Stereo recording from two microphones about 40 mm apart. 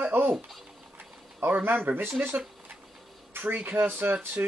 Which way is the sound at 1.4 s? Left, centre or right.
Right.